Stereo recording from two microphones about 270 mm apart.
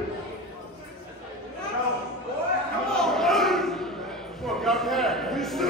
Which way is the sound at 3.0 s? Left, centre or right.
Centre.